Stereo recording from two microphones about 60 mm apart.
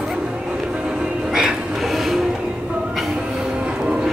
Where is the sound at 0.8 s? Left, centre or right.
Centre.